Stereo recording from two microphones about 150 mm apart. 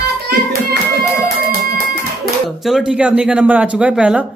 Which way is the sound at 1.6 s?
75° right (ahead or behind).